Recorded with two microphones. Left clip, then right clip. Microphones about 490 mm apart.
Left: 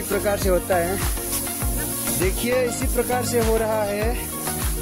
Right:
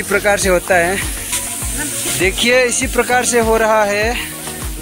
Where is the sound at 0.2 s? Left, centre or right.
Left.